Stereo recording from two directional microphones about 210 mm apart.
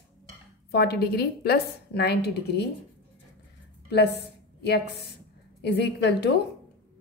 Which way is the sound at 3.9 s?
55° left (ahead or behind).